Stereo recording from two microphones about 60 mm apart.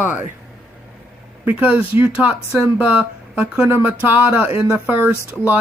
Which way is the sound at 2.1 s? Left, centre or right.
Centre.